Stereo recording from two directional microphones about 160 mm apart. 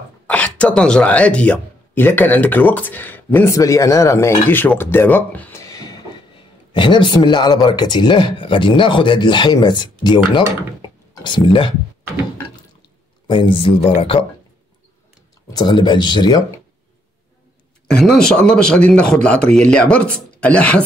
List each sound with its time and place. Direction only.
0.3 s speech: 5° left (ahead or behind); by 11.7 s 30° left (ahead or behind)
13.3 s speech: 30° left (ahead or behind)
15.5 s speech: 25° left (ahead or behind)
17.8 s speech: centre (ahead or behind)